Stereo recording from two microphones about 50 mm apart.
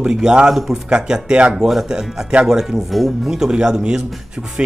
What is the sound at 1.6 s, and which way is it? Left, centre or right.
Speech, centre.